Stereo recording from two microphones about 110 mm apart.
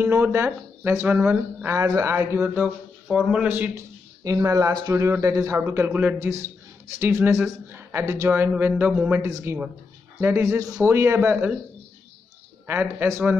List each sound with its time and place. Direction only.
0.0 s speech: 25° right (ahead or behind)
4.2 s speech: 30° right (ahead or behind)
4.9 s speech: 25° right (ahead or behind)
12.6 s speech: 20° right (ahead or behind)